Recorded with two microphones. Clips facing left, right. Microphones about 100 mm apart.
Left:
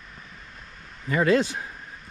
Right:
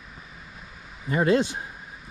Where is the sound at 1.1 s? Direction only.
25° right (ahead or behind).